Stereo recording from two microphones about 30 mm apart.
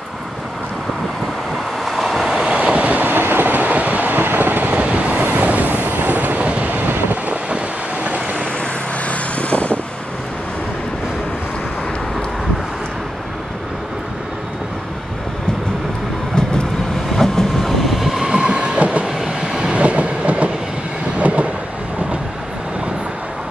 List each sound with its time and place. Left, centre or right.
2.2 s train: centre
2.5 s train: right
3.0 s train: right
3.6 s train: right
4.7 s vehicle: right
5.3 s waves: right
6.7 s train: right
7.4 s vehicle: right
9.0 s vehicle: left
17.1 s train: centre
18.2 s train: right
19.8 s train: right